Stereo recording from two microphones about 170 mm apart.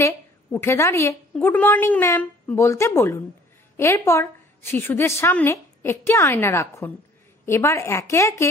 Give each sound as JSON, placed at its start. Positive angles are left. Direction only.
{"t": 0.0, "sound": "a woman's voice", "side_deg": 15}